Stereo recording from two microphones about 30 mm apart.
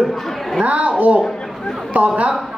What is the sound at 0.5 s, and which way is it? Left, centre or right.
A woman's voice, right.